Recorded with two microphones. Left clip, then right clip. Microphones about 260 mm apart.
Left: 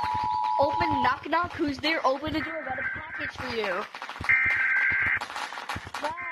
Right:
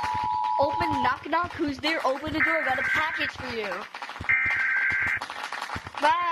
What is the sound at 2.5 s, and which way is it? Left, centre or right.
Speech, right.